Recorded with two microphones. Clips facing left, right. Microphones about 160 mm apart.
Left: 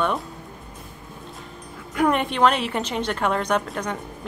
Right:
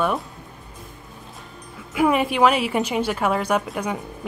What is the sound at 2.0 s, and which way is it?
A woman's voice, 5° right (ahead or behind).